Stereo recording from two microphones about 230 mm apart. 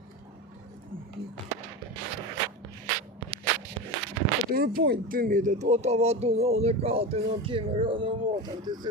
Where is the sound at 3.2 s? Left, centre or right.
Right.